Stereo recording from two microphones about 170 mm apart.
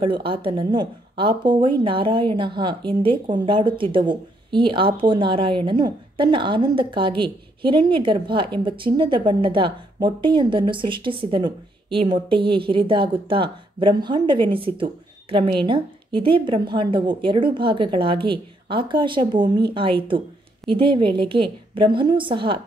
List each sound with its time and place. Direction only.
0.0 s speech: 30° right (ahead or behind)